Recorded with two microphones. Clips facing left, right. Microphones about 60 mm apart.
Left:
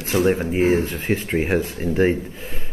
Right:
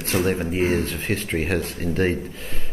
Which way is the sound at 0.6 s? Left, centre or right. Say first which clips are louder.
Left 4 dB; left.